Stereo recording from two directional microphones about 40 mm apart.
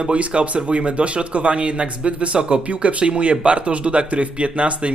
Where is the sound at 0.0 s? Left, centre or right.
Right.